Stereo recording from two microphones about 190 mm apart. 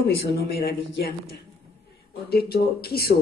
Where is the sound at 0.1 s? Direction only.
55° left (ahead or behind).